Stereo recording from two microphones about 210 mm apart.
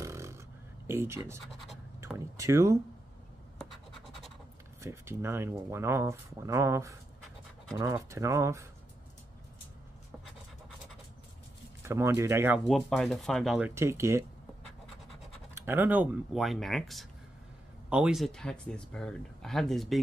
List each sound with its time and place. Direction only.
0.0 s a sound: 15° right (ahead or behind)
0.8 s speech: 10° right (ahead or behind)
4.8 s speech: 10° right (ahead or behind)
11.8 s speech: 10° right (ahead or behind)
15.5 s speech: 10° right (ahead or behind)